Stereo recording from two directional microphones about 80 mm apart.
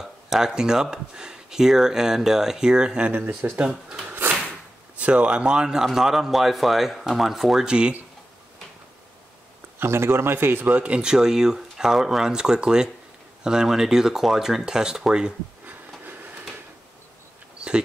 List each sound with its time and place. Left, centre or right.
0.0 s speech: centre
3.1 s speech: right
3.5 s speech: centre
4.1 s drawer open or close: right
4.9 s speech: centre
9.8 s speech: right; by 15.3 s centre
16.0 s a sound: right